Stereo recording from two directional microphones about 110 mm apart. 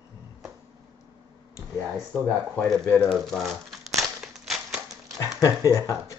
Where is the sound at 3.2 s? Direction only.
Centre (ahead or behind).